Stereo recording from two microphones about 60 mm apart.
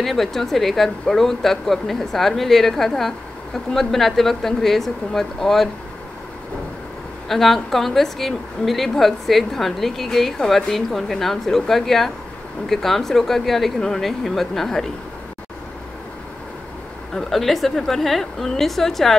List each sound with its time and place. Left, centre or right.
0.0 s speech: centre
7.2 s speech: centre
17.1 s speech: centre